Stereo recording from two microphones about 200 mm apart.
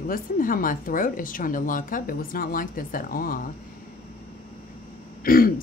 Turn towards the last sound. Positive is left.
turn(degrees=45)  # may be behind; listen again after turning